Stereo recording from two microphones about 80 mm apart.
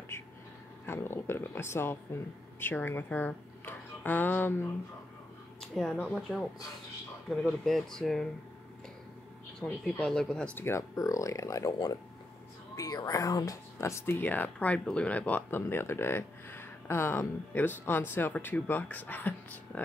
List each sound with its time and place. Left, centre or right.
0.1 s vehicle: left
0.8 s speech: left
5.6 s a sound: centre
7.2 s speech: centre
9.6 s speech: centre
10.5 s speech: left
10.8 s speech: left